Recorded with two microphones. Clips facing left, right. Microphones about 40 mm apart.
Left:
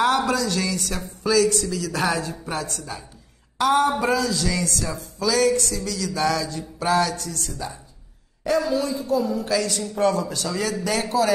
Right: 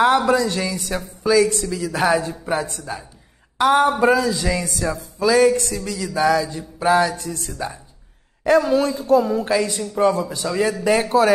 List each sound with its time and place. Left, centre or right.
0.3 s speech: right
6.1 s speech: centre
8.5 s speech: right
9.5 s speech: right